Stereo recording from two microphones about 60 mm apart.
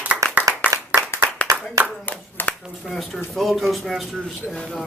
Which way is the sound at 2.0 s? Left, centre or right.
Left.